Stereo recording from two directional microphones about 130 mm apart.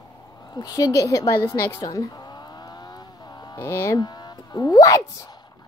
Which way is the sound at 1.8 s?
30° left (ahead or behind).